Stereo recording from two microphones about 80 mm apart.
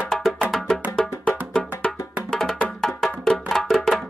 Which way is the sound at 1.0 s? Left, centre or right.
Centre.